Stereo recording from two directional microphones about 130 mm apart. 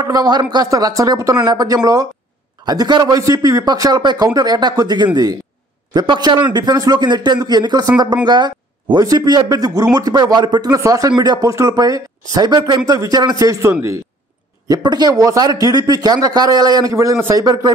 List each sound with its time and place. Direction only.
0.0 s speech: 30° right (ahead or behind)
14.7 s speech: 35° right (ahead or behind)